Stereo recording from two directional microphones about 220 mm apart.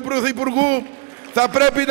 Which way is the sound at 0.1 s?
15° right (ahead or behind).